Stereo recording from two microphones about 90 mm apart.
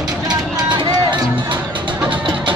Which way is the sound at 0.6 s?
55° right (ahead or behind).